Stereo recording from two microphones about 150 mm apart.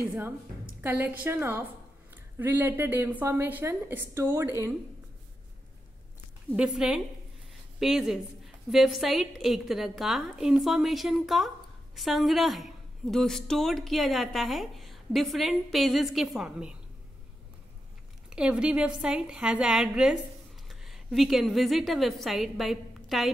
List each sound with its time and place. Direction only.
0.8 s a woman's voice: 10° right (ahead or behind)
6.5 s a woman's voice: 5° right (ahead or behind)
18.3 s a woman's voice: 5° right (ahead or behind)